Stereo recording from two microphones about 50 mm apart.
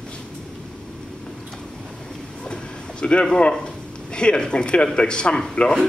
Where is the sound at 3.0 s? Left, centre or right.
Centre.